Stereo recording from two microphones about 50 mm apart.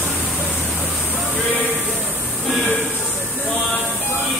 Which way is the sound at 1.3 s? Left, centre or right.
Left.